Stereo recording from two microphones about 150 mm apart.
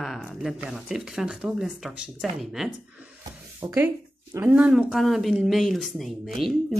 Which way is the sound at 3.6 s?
20° right (ahead or behind).